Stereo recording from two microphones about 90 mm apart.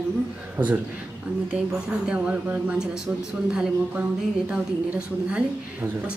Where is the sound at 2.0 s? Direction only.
10° right (ahead or behind).